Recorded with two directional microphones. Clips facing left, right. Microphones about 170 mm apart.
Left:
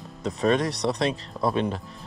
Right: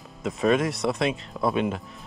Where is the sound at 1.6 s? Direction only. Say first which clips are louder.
Even; 35° left (ahead or behind).